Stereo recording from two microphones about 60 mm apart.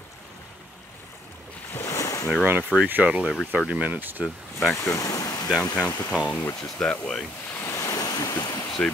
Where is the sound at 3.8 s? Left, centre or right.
Right.